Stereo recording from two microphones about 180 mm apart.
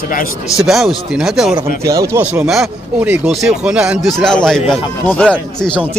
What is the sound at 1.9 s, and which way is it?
Speech, 15° right (ahead or behind).